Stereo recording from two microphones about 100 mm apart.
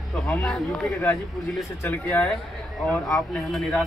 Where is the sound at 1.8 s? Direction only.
20° left (ahead or behind).